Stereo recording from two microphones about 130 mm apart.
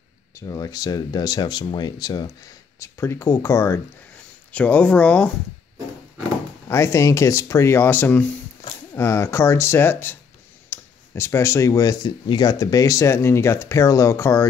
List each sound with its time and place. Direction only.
0.3 s speech: 25° left (ahead or behind)
4.5 s speech: 10° left (ahead or behind)
6.7 s speech: 20° left (ahead or behind)